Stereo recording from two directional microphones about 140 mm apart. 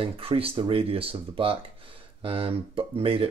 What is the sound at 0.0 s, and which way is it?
Speech, 40° right (ahead or behind).